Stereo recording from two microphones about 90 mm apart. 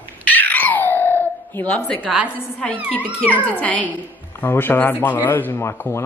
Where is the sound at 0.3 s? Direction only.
20° left (ahead or behind).